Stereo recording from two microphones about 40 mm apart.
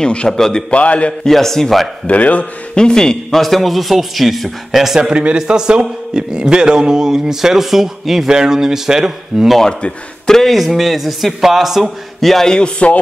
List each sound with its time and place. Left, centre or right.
0.0 s a man's voice: left
1.3 s a man's voice: centre
2.0 s a man's voice: left
2.7 s a man's voice: centre
5.0 s a man's voice: right
9.7 s a man's voice: left
10.2 s speech: centre
10.5 s a man's voice: centre
12.2 s a man's voice: centre
12.5 s a man's voice: left